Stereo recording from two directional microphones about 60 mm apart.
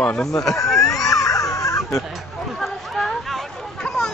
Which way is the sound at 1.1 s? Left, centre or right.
Left.